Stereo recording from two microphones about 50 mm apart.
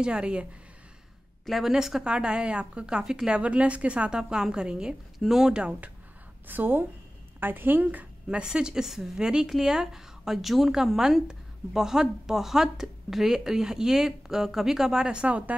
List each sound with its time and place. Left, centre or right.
0.0 s a woman's voice: right
1.5 s a woman's voice: centre
5.5 s a woman's voice: centre
6.4 s a woman's voice: right
8.3 s a woman's voice: centre